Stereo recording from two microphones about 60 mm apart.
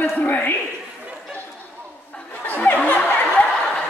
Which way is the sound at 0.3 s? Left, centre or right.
Left.